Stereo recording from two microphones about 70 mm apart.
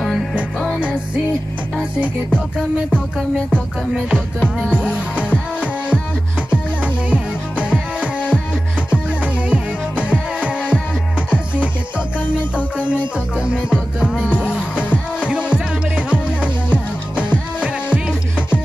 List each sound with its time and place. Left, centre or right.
0.7 s music: centre
4.4 s music: centre
6.5 s music: centre
12.5 s music: left
14.5 s music: centre
17.1 s music: centre